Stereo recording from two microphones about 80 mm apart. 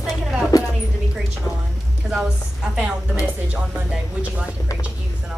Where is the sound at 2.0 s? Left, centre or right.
Centre.